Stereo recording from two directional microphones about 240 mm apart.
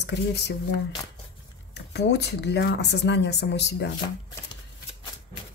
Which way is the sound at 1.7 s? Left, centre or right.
Left.